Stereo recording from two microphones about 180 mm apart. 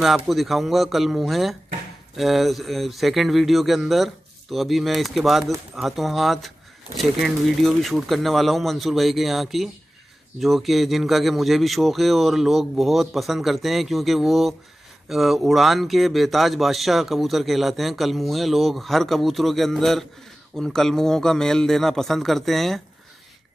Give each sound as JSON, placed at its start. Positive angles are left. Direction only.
{"t": 0.0, "sound": "speech", "side_deg": 0}